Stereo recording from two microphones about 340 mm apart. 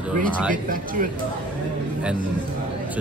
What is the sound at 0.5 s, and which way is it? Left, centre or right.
Speech, right.